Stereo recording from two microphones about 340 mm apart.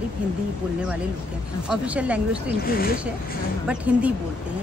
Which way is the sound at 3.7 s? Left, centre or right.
Centre.